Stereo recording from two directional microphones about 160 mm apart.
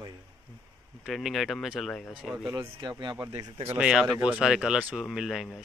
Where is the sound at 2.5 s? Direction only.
20° right (ahead or behind).